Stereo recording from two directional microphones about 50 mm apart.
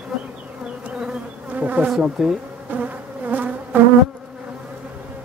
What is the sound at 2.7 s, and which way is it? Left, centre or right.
Bee, right.